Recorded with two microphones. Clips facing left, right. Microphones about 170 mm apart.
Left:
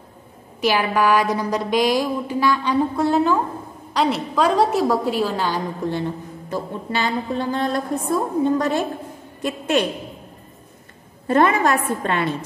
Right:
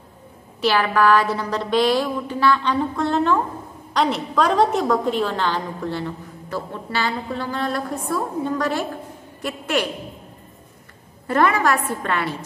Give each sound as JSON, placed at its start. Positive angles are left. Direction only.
{"t": 0.6, "sound": "a woman's voice", "side_deg": 15}
{"t": 11.2, "sound": "a woman's voice", "side_deg": 25}